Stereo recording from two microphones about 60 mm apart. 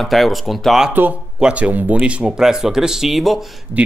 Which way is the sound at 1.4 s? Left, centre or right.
Right.